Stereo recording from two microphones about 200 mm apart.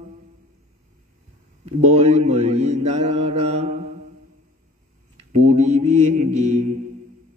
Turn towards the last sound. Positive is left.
turn(degrees=-35)  # may be behind; listen again after turning